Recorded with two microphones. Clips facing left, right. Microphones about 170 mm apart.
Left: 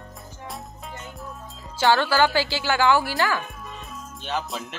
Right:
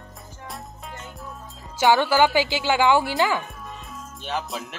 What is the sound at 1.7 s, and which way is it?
A woman's voice, 15° right (ahead or behind).